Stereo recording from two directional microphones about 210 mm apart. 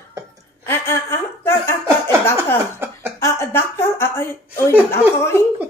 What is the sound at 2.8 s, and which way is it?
Cough, 10° right (ahead or behind).